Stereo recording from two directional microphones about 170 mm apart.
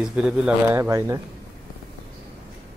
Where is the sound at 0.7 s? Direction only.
15° right (ahead or behind).